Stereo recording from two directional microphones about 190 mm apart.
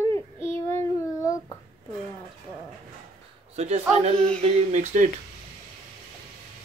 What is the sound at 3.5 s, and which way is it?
Speech, 35° right (ahead or behind).